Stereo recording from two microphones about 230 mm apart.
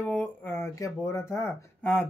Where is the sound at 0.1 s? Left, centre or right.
Centre.